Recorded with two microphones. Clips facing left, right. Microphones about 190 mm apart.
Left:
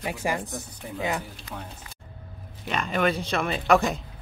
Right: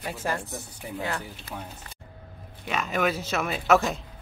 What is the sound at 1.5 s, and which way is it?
Speech, 10° right (ahead or behind).